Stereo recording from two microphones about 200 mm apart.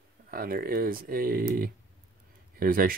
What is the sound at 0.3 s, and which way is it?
Speech, 45° right (ahead or behind).